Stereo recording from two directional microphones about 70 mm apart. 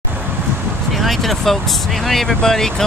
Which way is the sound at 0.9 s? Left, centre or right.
Centre.